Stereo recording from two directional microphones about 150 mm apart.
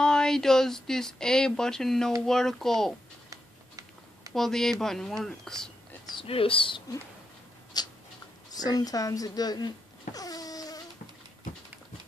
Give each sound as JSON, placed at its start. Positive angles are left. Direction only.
{"t": 0.0, "sound": "speech", "side_deg": 5}
{"t": 3.3, "sound": "a sound", "side_deg": -25}
{"t": 4.3, "sound": "speech", "side_deg": 5}
{"t": 6.1, "sound": "speech", "side_deg": 40}
{"t": 7.7, "sound": "a sound", "side_deg": 30}
{"t": 8.5, "sound": "speech", "side_deg": 25}
{"t": 10.1, "sound": "wail", "side_deg": 25}